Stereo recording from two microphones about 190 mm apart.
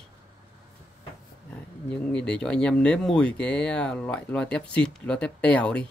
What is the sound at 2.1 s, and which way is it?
Speech, 5° left (ahead or behind).